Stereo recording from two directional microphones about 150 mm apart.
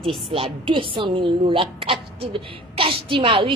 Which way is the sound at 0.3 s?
35° right (ahead or behind).